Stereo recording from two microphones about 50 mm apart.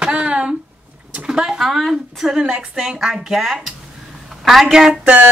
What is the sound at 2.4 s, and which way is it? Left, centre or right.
A woman's voice, centre.